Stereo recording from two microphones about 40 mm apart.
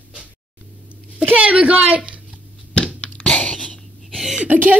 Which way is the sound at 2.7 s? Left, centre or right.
Left.